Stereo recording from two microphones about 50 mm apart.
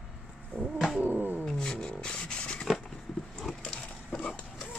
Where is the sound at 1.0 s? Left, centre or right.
Right.